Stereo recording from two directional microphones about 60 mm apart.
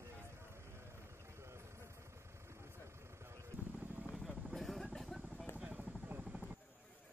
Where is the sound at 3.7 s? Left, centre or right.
Right.